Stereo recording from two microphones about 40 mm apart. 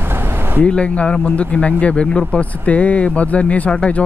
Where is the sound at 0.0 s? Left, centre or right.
Right.